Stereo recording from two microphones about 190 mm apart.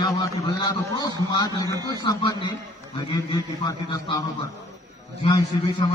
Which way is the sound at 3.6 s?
20° left (ahead or behind).